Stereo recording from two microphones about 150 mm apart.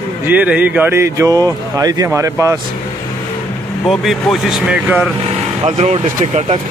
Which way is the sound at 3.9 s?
Centre (ahead or behind).